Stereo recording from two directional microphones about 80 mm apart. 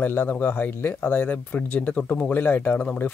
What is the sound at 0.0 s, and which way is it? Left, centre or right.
Speech, left.